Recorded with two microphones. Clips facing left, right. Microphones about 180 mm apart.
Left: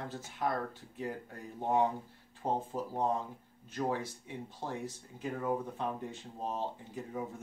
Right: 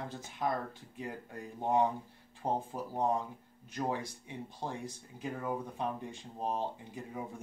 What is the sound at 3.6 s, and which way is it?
Speech, 15° right (ahead or behind).